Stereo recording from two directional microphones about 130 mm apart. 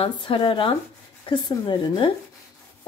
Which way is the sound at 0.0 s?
40° left (ahead or behind).